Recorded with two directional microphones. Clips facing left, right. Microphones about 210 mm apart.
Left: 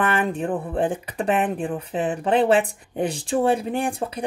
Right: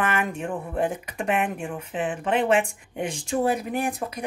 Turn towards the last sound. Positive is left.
turn(degrees=30)  # may be behind; listen again after turning